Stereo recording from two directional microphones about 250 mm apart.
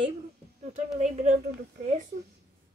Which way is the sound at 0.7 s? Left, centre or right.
Right.